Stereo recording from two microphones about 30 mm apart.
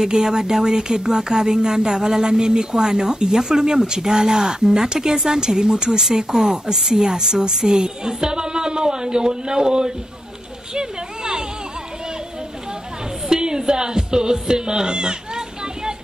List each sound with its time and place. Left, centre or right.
0.0 s a woman's voice: right
10.7 s a sound: right
13.3 s music: right